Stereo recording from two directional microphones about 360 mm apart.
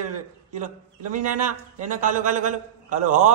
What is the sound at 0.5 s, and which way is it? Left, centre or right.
A man's voice, right.